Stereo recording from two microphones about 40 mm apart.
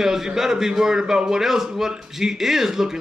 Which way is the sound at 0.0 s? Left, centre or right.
Centre.